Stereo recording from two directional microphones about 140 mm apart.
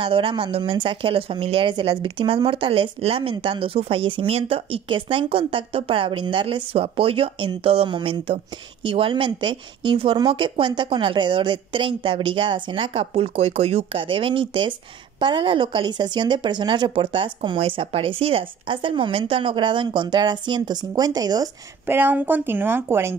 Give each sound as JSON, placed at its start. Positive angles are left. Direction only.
{"t": 0.0, "sound": "speech", "side_deg": -40}
{"t": 21.8, "sound": "speech", "side_deg": -15}